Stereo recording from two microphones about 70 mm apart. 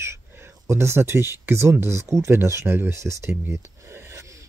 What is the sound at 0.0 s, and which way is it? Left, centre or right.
Speech, right.